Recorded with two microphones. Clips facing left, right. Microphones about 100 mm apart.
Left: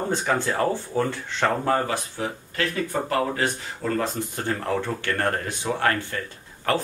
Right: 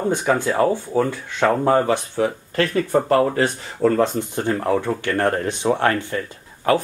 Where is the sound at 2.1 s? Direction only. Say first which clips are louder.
Right 8 dB; 40° right (ahead or behind).